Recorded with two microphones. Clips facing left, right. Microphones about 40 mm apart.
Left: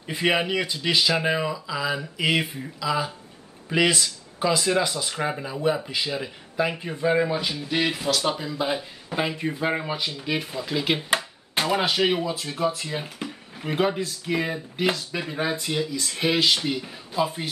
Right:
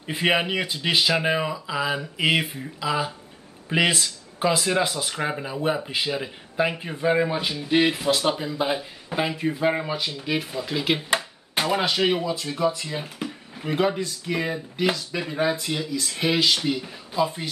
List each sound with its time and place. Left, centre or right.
0.1 s speech: centre
1.7 s speech: right
4.6 s speech: centre
5.4 s speech: centre
8.7 s speech: centre